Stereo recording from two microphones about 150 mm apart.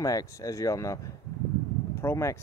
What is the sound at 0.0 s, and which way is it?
Speech, 25° left (ahead or behind).